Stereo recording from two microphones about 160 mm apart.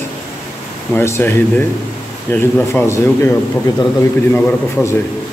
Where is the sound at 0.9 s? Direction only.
15° left (ahead or behind).